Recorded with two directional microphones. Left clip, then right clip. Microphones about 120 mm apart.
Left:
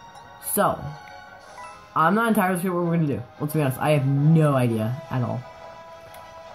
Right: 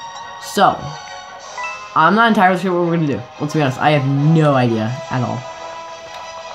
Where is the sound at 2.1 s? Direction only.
10° right (ahead or behind).